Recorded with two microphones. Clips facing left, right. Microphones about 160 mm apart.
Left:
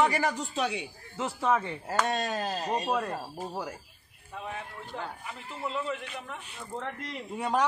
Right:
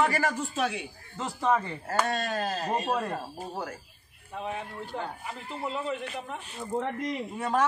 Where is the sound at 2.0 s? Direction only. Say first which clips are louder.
Even; 20° left (ahead or behind).